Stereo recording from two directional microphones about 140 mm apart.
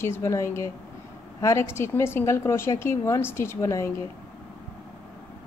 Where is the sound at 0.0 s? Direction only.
20° left (ahead or behind).